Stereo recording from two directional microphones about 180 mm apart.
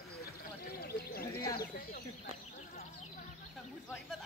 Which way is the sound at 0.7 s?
60° left (ahead or behind).